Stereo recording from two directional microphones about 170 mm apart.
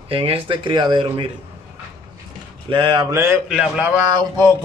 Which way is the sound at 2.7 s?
30° right (ahead or behind).